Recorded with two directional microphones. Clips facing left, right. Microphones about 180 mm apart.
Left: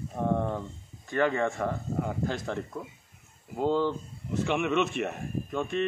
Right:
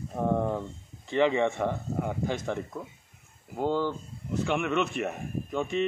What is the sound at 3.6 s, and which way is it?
Speech, 10° right (ahead or behind).